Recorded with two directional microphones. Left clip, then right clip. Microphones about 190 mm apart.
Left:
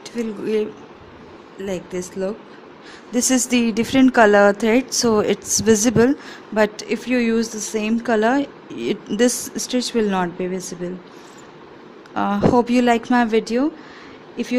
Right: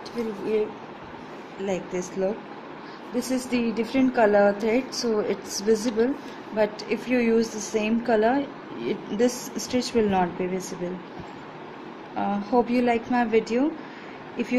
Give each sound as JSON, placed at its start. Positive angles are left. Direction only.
{"t": 0.2, "sound": "a woman's voice", "side_deg": 50}
{"t": 1.6, "sound": "speech", "side_deg": 35}
{"t": 3.2, "sound": "a woman's voice", "side_deg": 50}
{"t": 12.2, "sound": "a woman's voice", "side_deg": 45}